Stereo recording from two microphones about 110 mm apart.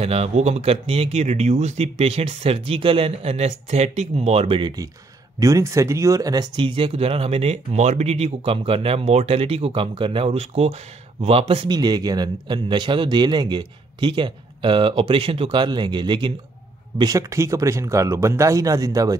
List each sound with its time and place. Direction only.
0.0 s speech: 70° right (ahead or behind)
5.4 s speech: 30° right (ahead or behind); by 11.7 s 60° right (ahead or behind)
11.7 s a man's voice: 40° right (ahead or behind)
17.0 s speech: 30° right (ahead or behind)